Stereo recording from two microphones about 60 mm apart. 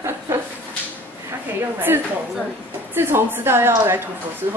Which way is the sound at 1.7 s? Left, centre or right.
Right.